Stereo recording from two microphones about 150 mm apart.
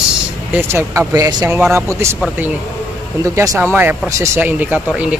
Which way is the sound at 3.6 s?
10° right (ahead or behind).